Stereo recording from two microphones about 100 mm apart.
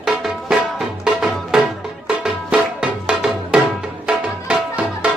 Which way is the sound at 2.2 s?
10° right (ahead or behind).